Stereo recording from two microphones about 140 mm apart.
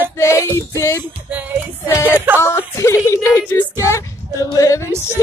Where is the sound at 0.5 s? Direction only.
20° left (ahead or behind).